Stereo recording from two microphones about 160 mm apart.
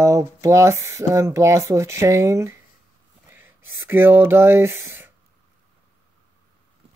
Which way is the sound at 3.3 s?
10° right (ahead or behind).